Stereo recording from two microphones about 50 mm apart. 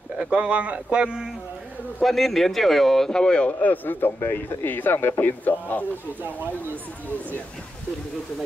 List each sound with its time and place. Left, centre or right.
0.3 s speech: right
2.0 s speech: centre
3.6 s speech: left
5.2 s speech: left
6.2 s speech: right